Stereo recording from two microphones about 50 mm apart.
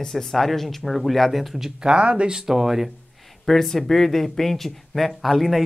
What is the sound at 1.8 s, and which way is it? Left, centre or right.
Speech, centre.